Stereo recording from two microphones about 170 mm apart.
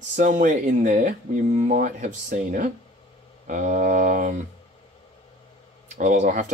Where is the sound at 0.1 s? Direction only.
50° right (ahead or behind).